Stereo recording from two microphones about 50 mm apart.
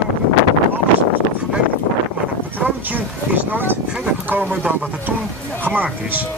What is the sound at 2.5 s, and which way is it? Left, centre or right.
Speech, right.